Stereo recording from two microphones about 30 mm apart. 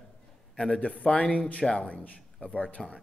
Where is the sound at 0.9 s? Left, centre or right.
Left.